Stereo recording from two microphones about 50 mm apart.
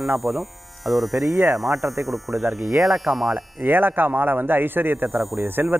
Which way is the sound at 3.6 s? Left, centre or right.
Right.